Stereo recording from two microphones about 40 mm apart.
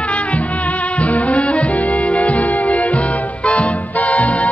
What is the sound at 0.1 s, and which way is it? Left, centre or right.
Music, left.